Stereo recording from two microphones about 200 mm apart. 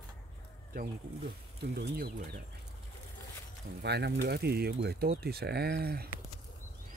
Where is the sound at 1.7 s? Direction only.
55° right (ahead or behind).